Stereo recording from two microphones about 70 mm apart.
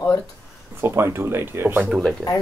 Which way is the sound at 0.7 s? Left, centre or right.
Right.